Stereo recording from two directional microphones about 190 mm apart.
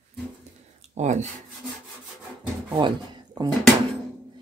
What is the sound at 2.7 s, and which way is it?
Speech, 25° right (ahead or behind).